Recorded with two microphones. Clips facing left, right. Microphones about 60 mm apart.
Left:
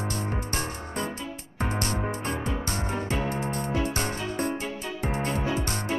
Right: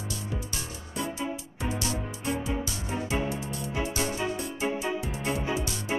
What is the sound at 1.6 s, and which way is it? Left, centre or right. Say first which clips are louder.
Music: left 4 dB; left.